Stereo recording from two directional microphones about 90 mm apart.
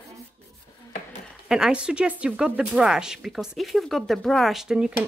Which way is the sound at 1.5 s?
10° right (ahead or behind).